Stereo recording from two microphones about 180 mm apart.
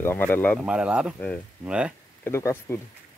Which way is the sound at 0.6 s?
5° right (ahead or behind).